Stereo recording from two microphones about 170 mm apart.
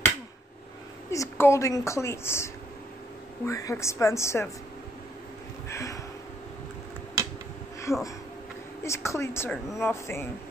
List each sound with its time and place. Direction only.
1.1 s a woman's voice: 15° left (ahead or behind)
5.7 s a sound: 20° left (ahead or behind)
7.9 s speech: centre (ahead or behind)
8.8 s a woman's voice: 15° left (ahead or behind)